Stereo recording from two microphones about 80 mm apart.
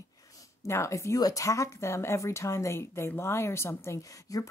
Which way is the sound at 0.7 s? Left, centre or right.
Left.